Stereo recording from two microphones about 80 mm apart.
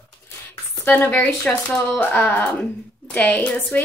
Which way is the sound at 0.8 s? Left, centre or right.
Left.